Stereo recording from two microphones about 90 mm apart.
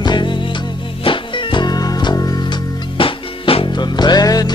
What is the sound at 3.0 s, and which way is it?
Music, 85° left.